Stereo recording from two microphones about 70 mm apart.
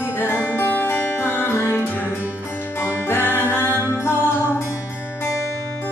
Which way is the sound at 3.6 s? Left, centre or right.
Left.